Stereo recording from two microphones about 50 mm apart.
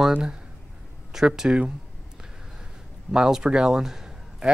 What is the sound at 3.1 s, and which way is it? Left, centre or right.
A man's voice, centre.